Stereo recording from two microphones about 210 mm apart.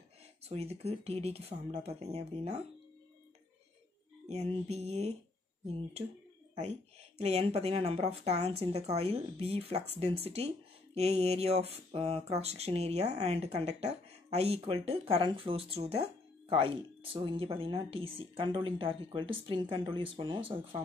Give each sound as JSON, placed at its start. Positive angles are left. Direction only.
{"t": 0.4, "sound": "speech", "side_deg": -30}
{"t": 4.3, "sound": "speech", "side_deg": -30}
{"t": 6.6, "sound": "speech", "side_deg": -30}